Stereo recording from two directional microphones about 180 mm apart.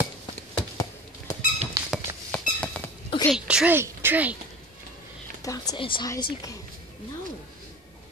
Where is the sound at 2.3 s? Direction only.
10° left (ahead or behind).